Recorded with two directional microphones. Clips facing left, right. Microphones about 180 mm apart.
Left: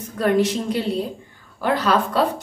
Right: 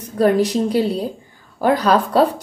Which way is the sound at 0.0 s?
35° right (ahead or behind).